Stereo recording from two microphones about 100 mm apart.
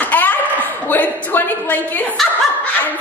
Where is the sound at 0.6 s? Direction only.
20° left (ahead or behind).